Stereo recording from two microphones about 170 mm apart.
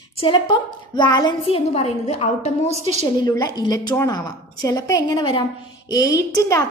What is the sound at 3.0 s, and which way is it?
A woman's voice, 25° left (ahead or behind).